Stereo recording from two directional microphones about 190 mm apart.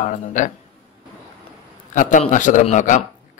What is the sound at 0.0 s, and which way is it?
Speech, 40° left (ahead or behind).